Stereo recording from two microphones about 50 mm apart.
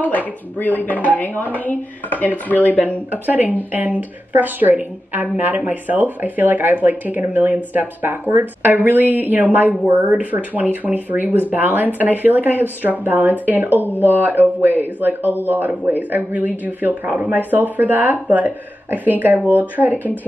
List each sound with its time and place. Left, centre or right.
0.6 s speech: left
3.1 s speech: right